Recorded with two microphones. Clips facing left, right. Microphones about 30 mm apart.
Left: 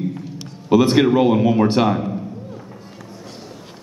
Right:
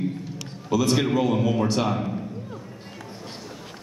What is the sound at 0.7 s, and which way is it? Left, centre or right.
A man's voice, left.